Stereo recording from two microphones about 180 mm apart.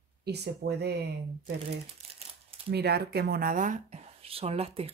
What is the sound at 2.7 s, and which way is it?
Speech, 65° right (ahead or behind).